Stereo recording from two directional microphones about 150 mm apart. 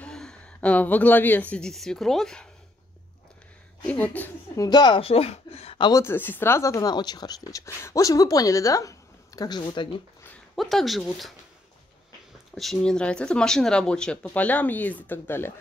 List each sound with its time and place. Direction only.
0.0 s speech: 5° left (ahead or behind)
3.8 s speech: 10° left (ahead or behind)
4.6 s speech: 25° left (ahead or behind)
5.9 s speech: 20° left (ahead or behind)
10.5 s speech: centre (ahead or behind)
12.5 s speech: 5° left (ahead or behind)